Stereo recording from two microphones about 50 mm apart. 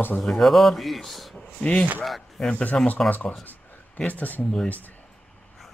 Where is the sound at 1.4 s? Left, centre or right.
Left.